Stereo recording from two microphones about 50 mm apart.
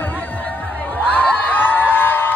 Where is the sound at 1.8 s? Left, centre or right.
Left.